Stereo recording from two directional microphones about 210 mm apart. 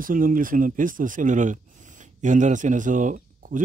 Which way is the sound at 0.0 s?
40° right (ahead or behind).